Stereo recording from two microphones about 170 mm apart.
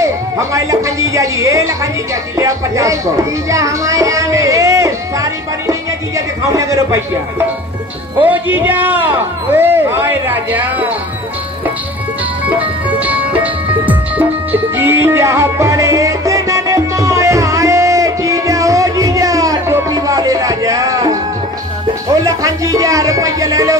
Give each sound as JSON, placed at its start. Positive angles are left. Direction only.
{"t": 0.0, "sound": "a man's voice", "side_deg": -20}
{"t": 12.5, "sound": "music", "side_deg": -10}
{"t": 22.2, "sound": "speech", "side_deg": -20}